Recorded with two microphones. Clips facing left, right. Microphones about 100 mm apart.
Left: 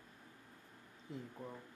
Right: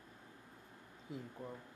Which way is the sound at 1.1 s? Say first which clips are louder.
Right 1 dB; 5° right (ahead or behind).